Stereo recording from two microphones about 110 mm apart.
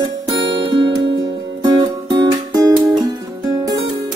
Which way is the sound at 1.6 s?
35° right (ahead or behind).